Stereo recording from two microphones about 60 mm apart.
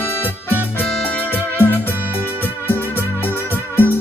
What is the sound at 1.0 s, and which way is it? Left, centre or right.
Music, left.